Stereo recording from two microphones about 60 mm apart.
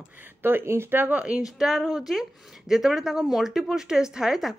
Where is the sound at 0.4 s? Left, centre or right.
Right.